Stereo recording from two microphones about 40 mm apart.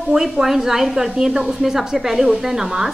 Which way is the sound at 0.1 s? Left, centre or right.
Centre.